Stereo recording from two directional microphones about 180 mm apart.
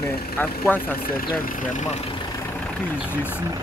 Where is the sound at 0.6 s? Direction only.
10° left (ahead or behind).